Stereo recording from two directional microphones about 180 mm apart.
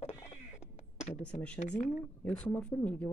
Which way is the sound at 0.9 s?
40° left (ahead or behind).